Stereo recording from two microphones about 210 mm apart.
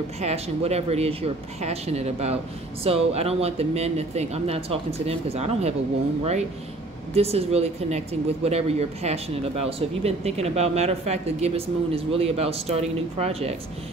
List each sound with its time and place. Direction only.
0.2 s speech: 30° right (ahead or behind)
7.2 s speech: 30° right (ahead or behind)